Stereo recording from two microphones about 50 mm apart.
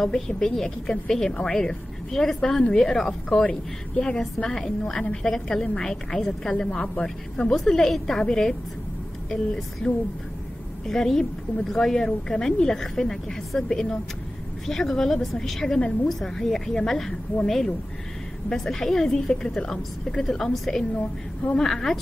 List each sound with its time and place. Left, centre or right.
0.0 s a woman's voice: centre
3.3 s a woman's voice: centre
9.8 s a woman's voice: centre
10.9 s a woman's voice: centre